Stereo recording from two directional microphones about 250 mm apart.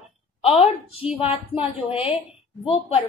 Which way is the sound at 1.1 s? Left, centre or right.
Left.